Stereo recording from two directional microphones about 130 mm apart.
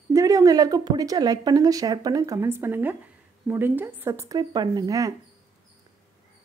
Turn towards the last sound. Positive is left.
turn(degrees=-25)  # may be behind; listen again after turning